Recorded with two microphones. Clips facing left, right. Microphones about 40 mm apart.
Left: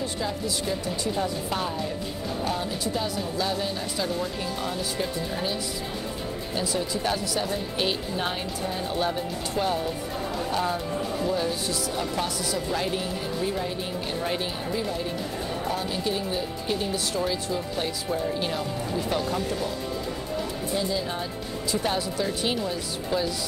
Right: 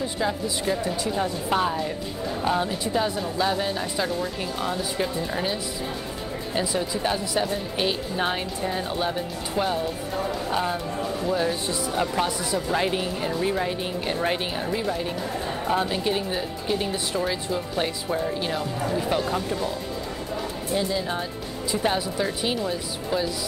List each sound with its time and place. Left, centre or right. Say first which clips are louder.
0.0 s speech: right 3 dB; centre
7.4 s a woman's voice: right 1 dB; centre
8.2 s speech: right 3 dB; centre
11.4 s speech: right 2 dB; right
20.7 s speech: right 3 dB; centre